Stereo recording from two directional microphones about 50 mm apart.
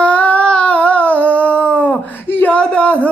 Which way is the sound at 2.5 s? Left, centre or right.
Left.